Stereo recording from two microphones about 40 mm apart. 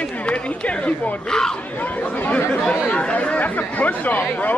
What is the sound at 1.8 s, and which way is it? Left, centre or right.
Speech, left.